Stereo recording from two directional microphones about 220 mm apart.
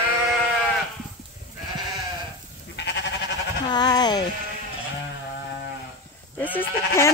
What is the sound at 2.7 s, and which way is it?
Goat, 50° left (ahead or behind).